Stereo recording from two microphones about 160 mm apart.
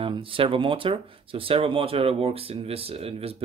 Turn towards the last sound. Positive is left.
turn(degrees=-40)  # may be behind; listen again after turning